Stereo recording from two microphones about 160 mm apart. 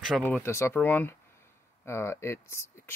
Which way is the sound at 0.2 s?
15° left (ahead or behind).